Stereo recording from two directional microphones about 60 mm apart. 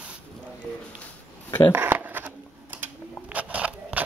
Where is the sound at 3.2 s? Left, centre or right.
Right.